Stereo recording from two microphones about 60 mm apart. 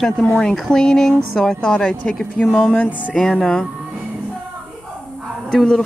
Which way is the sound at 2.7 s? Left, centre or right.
Left.